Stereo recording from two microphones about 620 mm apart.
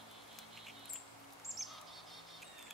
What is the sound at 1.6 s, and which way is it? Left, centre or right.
Bird vocalization, centre.